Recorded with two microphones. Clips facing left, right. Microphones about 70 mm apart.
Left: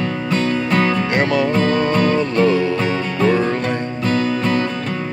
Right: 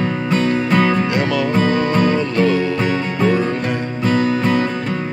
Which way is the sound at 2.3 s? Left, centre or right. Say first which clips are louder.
Left 2 dB; left.